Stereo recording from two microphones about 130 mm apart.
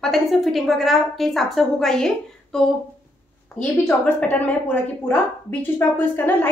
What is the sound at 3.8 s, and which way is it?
A woman's voice, 10° left (ahead or behind).